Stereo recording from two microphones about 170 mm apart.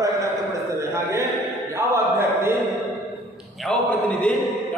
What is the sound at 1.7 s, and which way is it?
Mantra, 15° right (ahead or behind).